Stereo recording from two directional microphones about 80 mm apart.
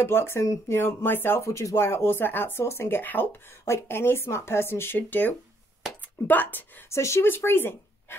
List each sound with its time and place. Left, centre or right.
0.0 s speech: left
6.9 s speech: left